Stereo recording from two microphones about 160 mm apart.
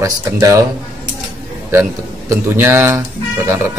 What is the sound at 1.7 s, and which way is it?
A man's voice, 15° right (ahead or behind).